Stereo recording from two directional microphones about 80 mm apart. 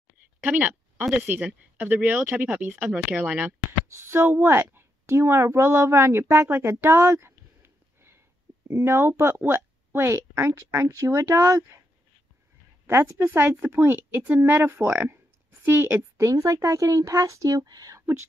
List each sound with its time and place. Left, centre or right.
0.4 s a sound: centre
1.1 s speech: right
3.9 s a woman's voice: right
12.8 s a woman's voice: right
16.3 s speech: right